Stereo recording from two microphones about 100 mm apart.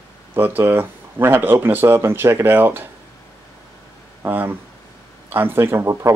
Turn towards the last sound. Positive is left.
turn(degrees=-25)  # may be behind; listen again after turning